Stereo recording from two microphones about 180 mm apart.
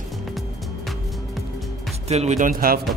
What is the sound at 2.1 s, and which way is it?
Speech, 35° right (ahead or behind).